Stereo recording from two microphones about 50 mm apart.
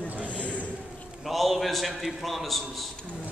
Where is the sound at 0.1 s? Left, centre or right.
Right.